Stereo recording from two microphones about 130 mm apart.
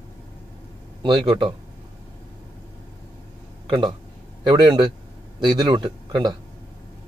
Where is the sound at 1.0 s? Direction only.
35° right (ahead or behind).